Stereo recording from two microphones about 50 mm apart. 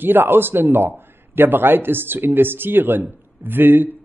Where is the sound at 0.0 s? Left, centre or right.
Right.